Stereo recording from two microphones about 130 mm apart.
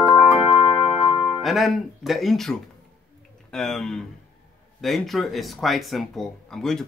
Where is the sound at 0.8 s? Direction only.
5° right (ahead or behind).